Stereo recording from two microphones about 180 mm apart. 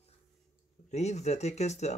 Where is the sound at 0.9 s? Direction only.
40° left (ahead or behind).